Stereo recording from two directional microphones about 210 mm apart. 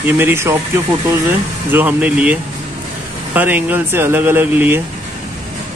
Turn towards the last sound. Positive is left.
turn(degrees=-10)  # may be behind; listen again after turning